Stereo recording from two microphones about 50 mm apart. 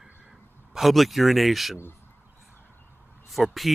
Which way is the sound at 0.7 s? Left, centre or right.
Centre.